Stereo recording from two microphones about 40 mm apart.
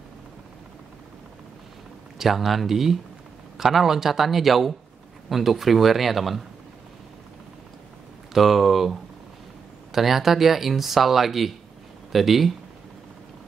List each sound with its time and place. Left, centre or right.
2.1 s speech: centre
8.3 s speech: centre
9.9 s speech: centre